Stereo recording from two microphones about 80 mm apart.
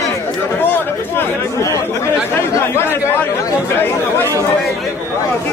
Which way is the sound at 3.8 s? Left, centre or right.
Left.